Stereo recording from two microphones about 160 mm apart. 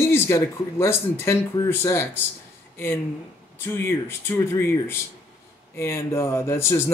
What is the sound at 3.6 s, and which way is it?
Speech, 15° left (ahead or behind).